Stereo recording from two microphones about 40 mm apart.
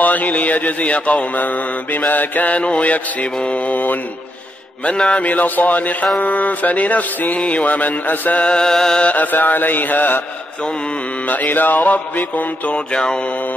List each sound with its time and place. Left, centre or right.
0.0 s mantra: left
2.6 s mantra: left
4.9 s mantra: left
5.2 s mantra: left
8.5 s music: centre
9.0 s mantra: left
11.2 s mantra: left
12.7 s mantra: left